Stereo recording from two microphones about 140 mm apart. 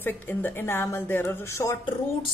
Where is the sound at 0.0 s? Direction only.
15° left (ahead or behind).